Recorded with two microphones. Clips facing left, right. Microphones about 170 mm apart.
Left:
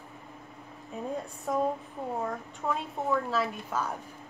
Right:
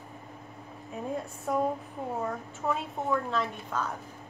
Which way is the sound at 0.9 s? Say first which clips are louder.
Even; centre (ahead or behind).